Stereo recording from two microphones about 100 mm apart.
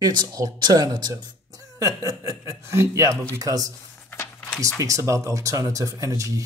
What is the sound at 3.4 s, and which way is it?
Speech, 35° right (ahead or behind).